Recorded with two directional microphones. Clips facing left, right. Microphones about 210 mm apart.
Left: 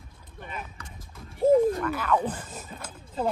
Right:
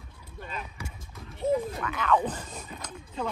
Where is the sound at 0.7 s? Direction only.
10° right (ahead or behind).